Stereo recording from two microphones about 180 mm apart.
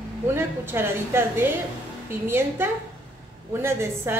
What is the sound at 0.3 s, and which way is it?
A woman's voice, 15° right (ahead or behind).